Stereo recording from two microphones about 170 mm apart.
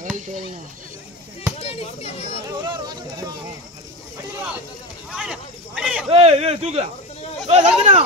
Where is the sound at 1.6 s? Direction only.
35° left (ahead or behind).